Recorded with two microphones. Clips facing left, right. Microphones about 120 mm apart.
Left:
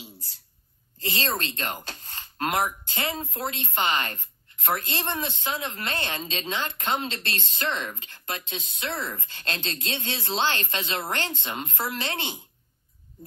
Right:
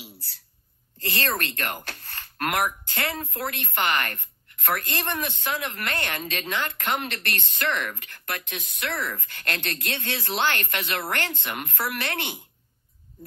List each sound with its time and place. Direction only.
0.9 s speech: 15° left (ahead or behind)